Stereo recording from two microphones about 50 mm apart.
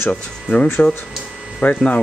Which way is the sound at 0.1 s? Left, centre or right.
Left.